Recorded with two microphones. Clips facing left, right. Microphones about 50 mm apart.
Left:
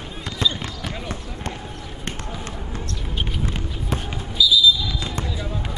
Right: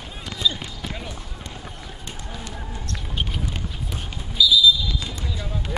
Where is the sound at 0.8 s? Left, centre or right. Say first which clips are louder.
Left 3 dB; left.